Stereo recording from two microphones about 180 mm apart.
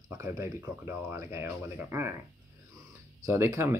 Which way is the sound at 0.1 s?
15° right (ahead or behind).